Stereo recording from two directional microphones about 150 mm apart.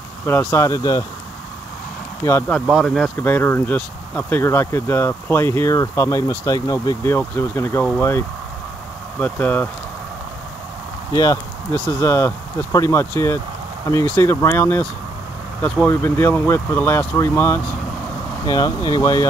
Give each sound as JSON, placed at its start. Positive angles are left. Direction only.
{"t": 0.3, "sound": "speech", "side_deg": 15}
{"t": 2.2, "sound": "speech", "side_deg": 20}
{"t": 2.7, "sound": "speech", "side_deg": 0}
{"t": 9.2, "sound": "speech", "side_deg": 10}
{"t": 11.7, "sound": "speech", "side_deg": 15}
{"t": 18.5, "sound": "speech", "side_deg": 25}